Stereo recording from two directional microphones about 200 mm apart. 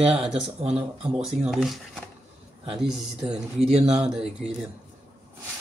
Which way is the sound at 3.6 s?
30° right (ahead or behind).